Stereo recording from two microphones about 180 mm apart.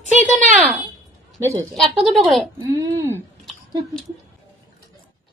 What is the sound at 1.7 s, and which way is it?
Speech, centre (ahead or behind).